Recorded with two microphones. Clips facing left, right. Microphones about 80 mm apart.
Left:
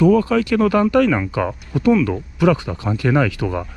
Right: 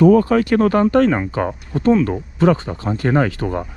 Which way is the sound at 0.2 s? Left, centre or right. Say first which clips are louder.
Right 2 dB; right.